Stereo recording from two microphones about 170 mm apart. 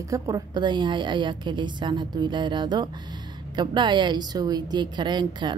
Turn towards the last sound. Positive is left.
turn(degrees=-25)  # may be behind; listen again after turning